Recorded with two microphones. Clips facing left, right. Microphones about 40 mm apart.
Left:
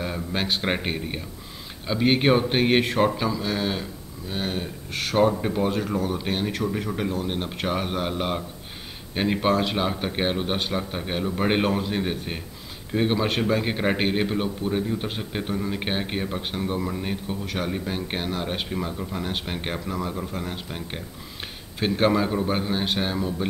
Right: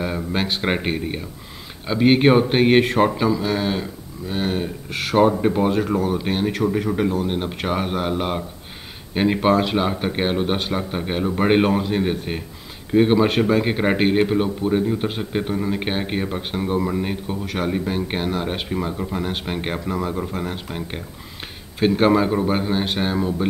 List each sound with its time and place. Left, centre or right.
0.0 s speech: centre